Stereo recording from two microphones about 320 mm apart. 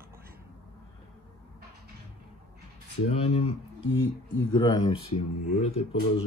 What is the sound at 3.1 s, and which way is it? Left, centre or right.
Speech, centre.